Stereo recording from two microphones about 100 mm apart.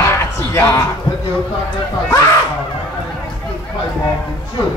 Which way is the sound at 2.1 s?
30° left (ahead or behind).